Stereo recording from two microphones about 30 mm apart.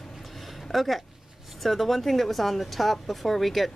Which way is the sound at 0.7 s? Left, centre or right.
Centre.